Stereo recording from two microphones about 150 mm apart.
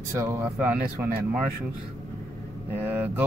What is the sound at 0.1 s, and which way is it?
Speech, 20° right (ahead or behind).